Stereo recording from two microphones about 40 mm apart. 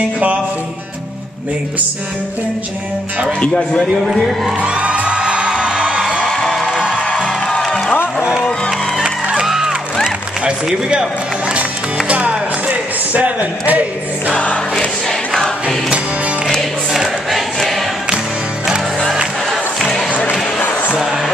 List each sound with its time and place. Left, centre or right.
4.0 s a man's voice: centre
4.6 s music: right
6.2 s music: centre
6.7 s music: centre
8.2 s music: centre
10.4 s a man's voice: right
12.1 s music: right
14.3 s choir: left
15.0 s choir: centre
17.3 s choir: centre
19.0 s crowd: centre
20.1 s a sound: left